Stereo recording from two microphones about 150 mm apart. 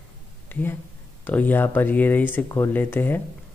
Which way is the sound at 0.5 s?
15° left (ahead or behind).